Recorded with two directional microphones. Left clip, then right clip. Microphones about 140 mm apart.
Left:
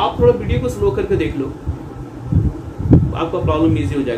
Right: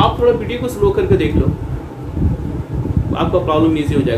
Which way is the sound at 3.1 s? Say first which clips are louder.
Right 3 dB; centre (ahead or behind).